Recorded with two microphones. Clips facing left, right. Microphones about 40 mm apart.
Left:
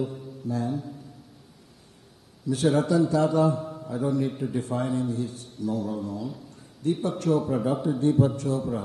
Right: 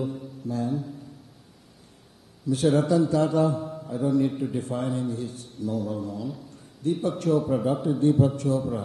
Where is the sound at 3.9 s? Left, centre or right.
Left.